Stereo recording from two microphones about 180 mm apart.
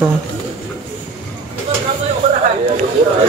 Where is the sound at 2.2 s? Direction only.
40° right (ahead or behind).